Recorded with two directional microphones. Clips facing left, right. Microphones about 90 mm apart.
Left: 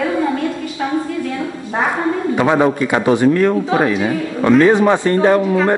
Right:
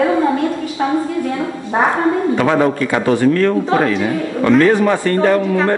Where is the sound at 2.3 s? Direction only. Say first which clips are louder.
Even; 15° left (ahead or behind).